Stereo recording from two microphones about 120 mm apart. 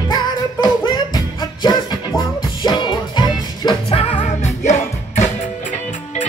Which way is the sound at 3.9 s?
50° left (ahead or behind).